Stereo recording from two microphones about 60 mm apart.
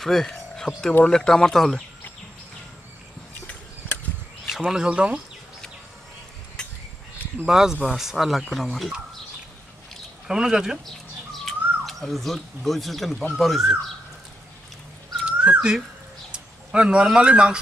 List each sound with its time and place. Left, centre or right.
0.0 s a sound: centre
1.0 s speech: centre
3.3 s a sound: left
4.5 s a sound: centre
4.7 s speech: centre
7.4 s speech: centre
10.2 s speech: centre
11.3 s speech: centre
15.2 s dog: right
16.3 s speech: centre